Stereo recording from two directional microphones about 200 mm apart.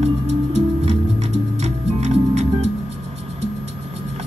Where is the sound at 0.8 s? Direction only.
35° right (ahead or behind).